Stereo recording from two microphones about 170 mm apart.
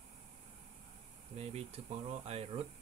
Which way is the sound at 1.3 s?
35° right (ahead or behind).